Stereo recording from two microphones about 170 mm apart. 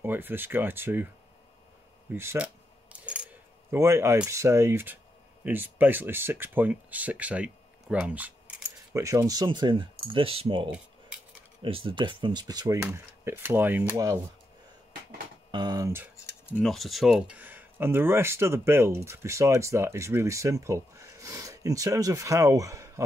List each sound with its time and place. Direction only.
0.0 s speech: 10° right (ahead or behind)
2.0 s coin: 10° right (ahead or behind)
3.7 s speech: 15° right (ahead or behind)
15.5 s speech: 25° right (ahead or behind)
16.3 s a sound: 15° left (ahead or behind)
16.6 s speech: centre (ahead or behind); by 23.0 s 20° right (ahead or behind)